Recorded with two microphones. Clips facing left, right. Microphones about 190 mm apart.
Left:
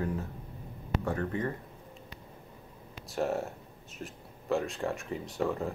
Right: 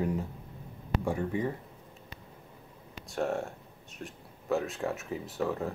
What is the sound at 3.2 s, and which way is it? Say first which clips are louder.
Speech: even; centre (ahead or behind).